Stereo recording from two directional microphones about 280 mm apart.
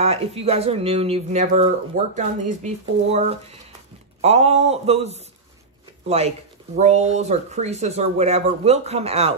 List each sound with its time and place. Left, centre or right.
0.0 s speech: right